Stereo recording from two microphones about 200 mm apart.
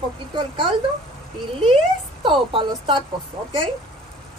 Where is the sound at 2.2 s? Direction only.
25° right (ahead or behind).